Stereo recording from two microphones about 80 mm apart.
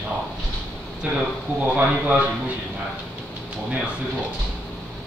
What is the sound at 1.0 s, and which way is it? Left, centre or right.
Speech, centre.